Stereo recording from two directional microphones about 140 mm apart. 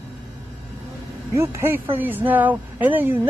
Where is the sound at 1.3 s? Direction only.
20° right (ahead or behind).